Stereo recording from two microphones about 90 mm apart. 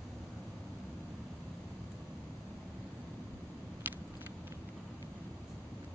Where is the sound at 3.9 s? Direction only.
20° right (ahead or behind).